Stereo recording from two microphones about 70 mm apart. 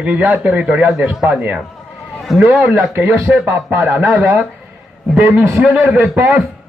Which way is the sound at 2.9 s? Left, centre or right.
Right.